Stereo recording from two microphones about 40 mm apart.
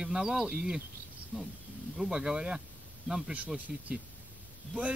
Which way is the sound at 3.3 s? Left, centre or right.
Right.